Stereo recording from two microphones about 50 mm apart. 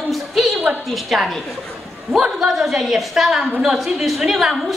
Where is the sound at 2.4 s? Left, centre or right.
Centre.